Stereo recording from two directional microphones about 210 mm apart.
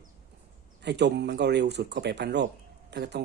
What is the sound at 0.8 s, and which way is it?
Speech, 55° right (ahead or behind).